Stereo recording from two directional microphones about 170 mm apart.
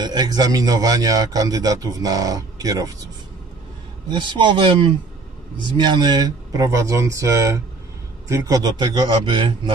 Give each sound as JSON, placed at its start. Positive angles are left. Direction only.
{"t": 0.0, "sound": "a man's voice", "side_deg": -25}
{"t": 4.1, "sound": "a man's voice", "side_deg": -30}